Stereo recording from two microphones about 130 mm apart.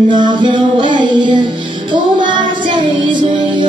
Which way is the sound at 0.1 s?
35° right (ahead or behind).